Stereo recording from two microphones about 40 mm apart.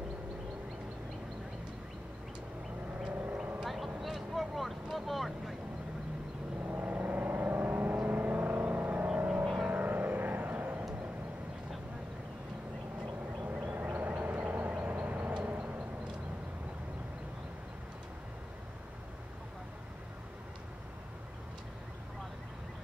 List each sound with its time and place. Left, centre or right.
3.1 s vehicle: right
3.6 s vehicle: centre
6.8 s vehicle: right
13.4 s vehicle: right